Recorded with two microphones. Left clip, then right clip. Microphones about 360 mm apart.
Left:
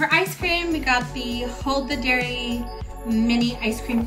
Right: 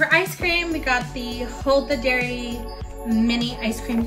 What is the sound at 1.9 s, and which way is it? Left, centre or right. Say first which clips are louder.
Speech: right 1 dB; left.